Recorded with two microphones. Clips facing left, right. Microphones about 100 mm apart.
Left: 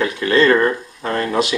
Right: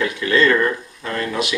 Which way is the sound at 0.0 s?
35° left (ahead or behind).